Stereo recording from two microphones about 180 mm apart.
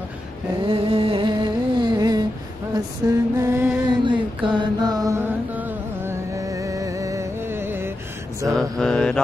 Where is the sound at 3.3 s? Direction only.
15° right (ahead or behind).